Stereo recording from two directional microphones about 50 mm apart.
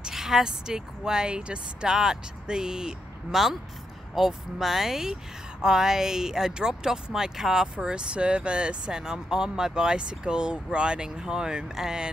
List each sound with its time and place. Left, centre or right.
0.0 s speech: centre
7.6 s speech: centre